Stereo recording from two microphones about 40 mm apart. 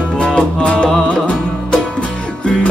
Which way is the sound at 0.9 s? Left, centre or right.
Centre.